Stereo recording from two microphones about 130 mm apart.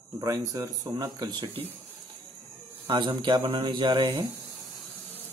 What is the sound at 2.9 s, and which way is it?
Speech, 35° right (ahead or behind).